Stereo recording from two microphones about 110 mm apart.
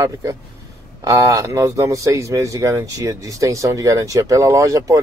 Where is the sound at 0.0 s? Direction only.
30° right (ahead or behind).